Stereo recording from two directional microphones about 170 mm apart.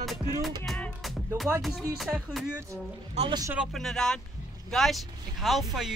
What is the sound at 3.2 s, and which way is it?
Speech, 30° right (ahead or behind).